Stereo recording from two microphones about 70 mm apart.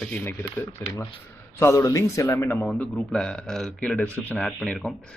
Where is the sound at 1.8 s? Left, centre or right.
Left.